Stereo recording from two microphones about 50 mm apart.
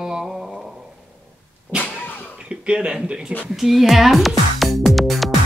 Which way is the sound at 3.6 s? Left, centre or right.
Centre.